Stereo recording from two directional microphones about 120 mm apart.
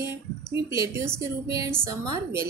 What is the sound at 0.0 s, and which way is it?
Speech, 20° right (ahead or behind).